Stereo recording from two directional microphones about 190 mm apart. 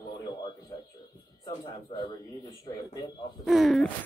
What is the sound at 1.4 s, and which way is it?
Speech, 25° left (ahead or behind).